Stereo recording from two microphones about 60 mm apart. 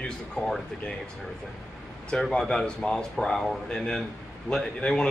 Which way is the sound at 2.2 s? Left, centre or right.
Centre.